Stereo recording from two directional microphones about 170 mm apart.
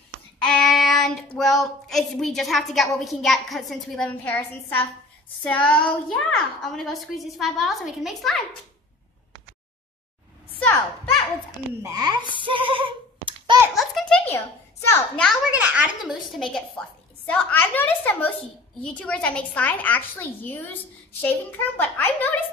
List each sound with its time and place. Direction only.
0.5 s speech: centre (ahead or behind)
11.8 s a child's voice: 20° right (ahead or behind)
12.4 s a sound: 30° right (ahead or behind)
13.7 s a sound: centre (ahead or behind)
14.9 s a woman's voice: 5° left (ahead or behind)
15.5 s speech: 10° right (ahead or behind)
16.3 s a woman's voice: centre (ahead or behind)